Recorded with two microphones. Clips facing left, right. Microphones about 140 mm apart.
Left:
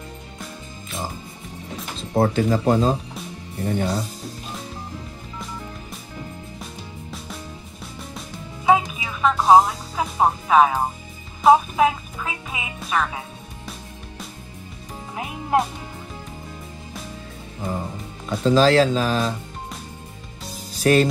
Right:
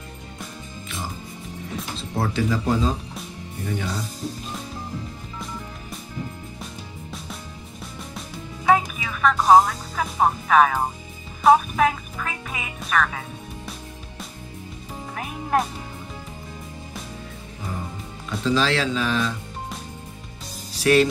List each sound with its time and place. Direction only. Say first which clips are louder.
2.0 s speech: left 6 dB; 45° left (ahead or behind)
8.6 s music: left 1 dB; 20° left (ahead or behind)
10.5 s speech: left 1 dB; 25° left (ahead or behind)
11.5 s music: left 1 dB; 20° left (ahead or behind)
18.4 s speech: left 6 dB; 45° left (ahead or behind)
20.8 s speech: left 1 dB; 40° left (ahead or behind)